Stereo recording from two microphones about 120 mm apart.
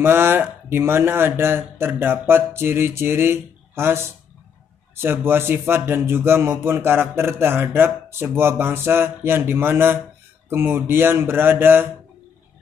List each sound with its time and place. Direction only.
0.0 s speech: 20° right (ahead or behind)